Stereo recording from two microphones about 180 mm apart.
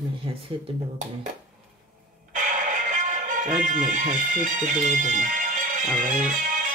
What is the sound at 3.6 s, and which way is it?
Speech, 45° right (ahead or behind).